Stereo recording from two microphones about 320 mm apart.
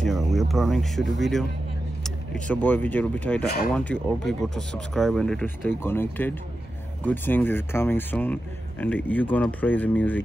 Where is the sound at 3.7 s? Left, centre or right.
Centre.